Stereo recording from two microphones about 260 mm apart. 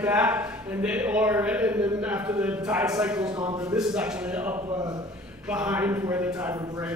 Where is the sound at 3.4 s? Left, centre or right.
Centre.